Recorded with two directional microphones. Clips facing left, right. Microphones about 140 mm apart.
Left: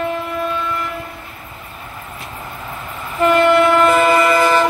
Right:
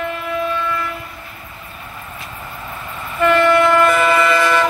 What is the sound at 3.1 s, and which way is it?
Train, 20° left (ahead or behind).